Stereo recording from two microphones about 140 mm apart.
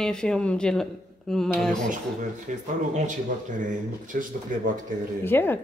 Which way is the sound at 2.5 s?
70° right (ahead or behind).